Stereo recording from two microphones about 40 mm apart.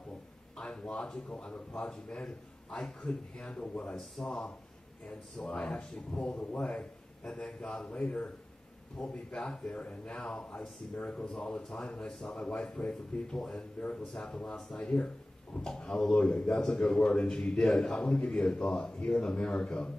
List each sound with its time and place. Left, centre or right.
0.6 s speech: centre
1.3 s a man's voice: left; by 3.1 s centre
3.1 s a man's voice: left
12.6 s a man's voice: left
13.3 s speech: centre
13.7 s a man's voice: left
14.1 s a man's voice: left
16.2 s a man's voice: left
16.4 s a man's voice: centre
18.0 s a man's voice: left